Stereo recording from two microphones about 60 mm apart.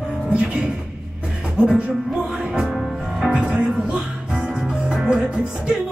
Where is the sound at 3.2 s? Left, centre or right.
Centre.